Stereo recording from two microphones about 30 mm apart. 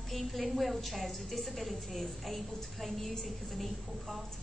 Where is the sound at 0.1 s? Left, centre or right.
Centre.